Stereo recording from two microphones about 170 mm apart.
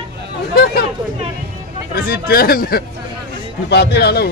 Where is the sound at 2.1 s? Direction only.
60° left (ahead or behind).